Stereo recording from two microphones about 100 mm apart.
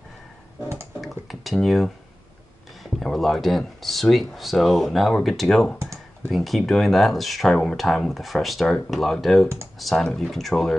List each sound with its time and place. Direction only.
1.0 s a sound: centre (ahead or behind)
2.8 s speech: centre (ahead or behind)
5.8 s computer keyboard: 30° right (ahead or behind)
6.3 s speech: centre (ahead or behind)